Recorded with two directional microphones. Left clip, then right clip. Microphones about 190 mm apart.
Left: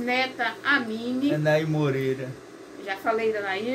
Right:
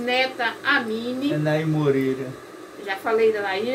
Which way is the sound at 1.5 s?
25° left (ahead or behind).